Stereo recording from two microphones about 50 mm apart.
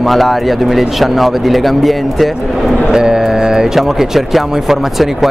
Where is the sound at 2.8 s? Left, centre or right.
Centre.